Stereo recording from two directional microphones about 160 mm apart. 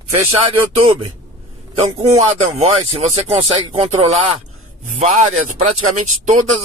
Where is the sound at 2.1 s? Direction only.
45° right (ahead or behind).